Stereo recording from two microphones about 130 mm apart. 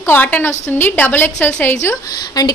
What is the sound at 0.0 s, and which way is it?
A woman's voice, 15° left (ahead or behind).